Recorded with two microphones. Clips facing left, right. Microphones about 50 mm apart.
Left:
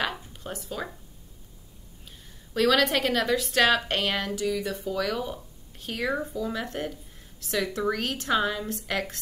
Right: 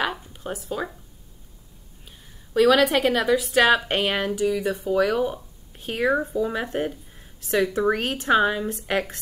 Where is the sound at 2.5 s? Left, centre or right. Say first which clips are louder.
Right 5 dB; centre.